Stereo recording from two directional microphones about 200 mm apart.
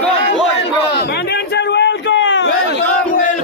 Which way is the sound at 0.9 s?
60° left (ahead or behind).